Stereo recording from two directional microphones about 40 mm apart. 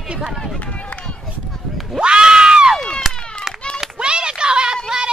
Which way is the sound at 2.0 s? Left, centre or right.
Right.